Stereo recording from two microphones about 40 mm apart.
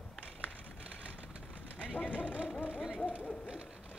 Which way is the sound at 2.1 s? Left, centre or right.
Right.